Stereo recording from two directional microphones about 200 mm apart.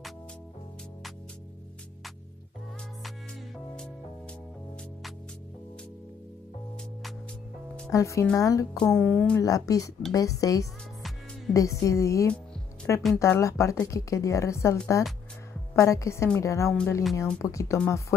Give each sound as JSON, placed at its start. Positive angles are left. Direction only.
{"t": 3.5, "sound": "music", "side_deg": 5}
{"t": 7.9, "sound": "a woman's voice", "side_deg": 15}
{"t": 8.7, "sound": "speech", "side_deg": 5}
{"t": 9.4, "sound": "a woman's voice", "side_deg": 15}